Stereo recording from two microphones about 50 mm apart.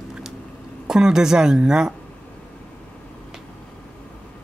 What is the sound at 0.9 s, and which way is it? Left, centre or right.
Speech, centre.